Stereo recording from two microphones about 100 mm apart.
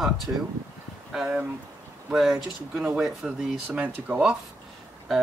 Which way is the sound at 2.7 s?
15° right (ahead or behind).